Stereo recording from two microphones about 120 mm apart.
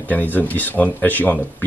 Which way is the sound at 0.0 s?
15° left (ahead or behind).